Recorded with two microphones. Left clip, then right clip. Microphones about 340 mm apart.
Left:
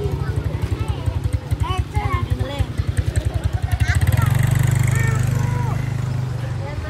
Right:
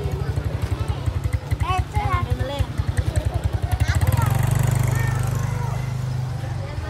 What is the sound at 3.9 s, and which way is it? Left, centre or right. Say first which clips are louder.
Vehicle: left 1 dB; centre.